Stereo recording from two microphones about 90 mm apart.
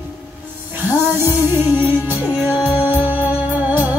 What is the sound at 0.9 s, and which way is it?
Music, 25° right (ahead or behind).